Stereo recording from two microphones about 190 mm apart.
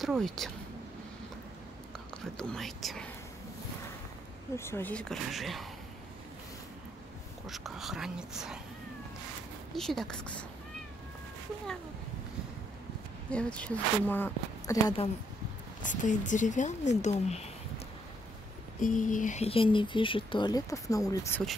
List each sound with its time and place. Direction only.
0.0 s speech: centre (ahead or behind)
2.3 s speech: 5° left (ahead or behind)
4.6 s speech: 15° left (ahead or behind)
7.4 s speech: centre (ahead or behind)
9.8 s speech: centre (ahead or behind)
13.3 s a woman's voice: 5° left (ahead or behind)
15.8 s speech: 40° left (ahead or behind)
18.8 s speech: 45° left (ahead or behind); by 21.4 s 15° left (ahead or behind)